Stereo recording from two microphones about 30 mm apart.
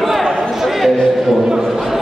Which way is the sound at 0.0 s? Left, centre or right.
Centre.